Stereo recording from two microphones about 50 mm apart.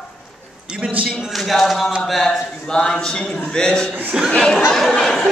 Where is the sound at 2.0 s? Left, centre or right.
Centre.